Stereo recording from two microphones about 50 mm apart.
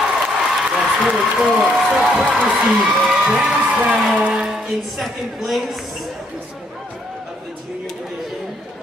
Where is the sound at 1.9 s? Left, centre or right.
Centre.